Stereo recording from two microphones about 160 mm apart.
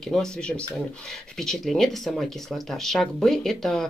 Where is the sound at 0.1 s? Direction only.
5° left (ahead or behind).